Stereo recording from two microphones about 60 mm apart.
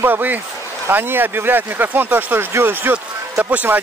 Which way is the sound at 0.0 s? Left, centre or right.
Right.